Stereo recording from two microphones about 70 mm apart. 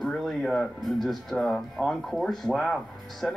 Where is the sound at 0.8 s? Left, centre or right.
Centre.